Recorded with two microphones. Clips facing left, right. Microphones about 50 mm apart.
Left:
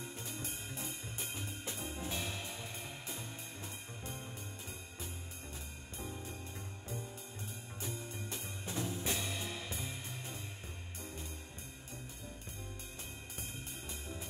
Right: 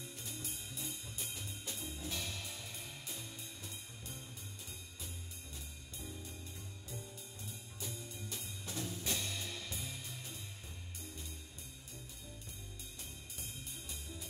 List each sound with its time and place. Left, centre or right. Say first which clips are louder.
0.0 s music: left 4 dB; left
2.0 s music: left 2 dB; left
5.9 s music: left 4 dB; left
7.8 s music: left 3 dB; left
14.0 s music: left 4 dB; left